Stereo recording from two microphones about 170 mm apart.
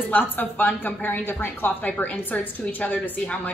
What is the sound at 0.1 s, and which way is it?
A woman's voice, 10° left (ahead or behind).